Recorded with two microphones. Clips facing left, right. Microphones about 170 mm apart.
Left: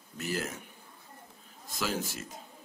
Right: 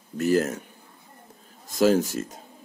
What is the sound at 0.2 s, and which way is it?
Speech, 45° right (ahead or behind).